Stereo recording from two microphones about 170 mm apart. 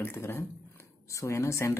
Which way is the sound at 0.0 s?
15° left (ahead or behind).